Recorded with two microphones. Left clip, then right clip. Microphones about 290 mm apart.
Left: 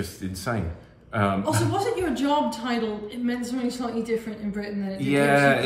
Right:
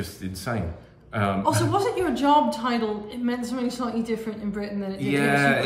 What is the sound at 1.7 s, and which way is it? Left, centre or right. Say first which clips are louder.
A woman's voice: right 2 dB; centre.